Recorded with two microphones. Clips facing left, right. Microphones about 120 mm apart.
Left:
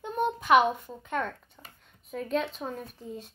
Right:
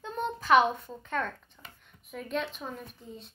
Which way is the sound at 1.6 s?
35° left (ahead or behind).